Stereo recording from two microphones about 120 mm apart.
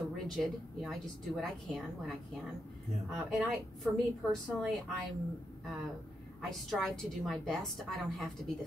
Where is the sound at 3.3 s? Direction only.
Centre (ahead or behind).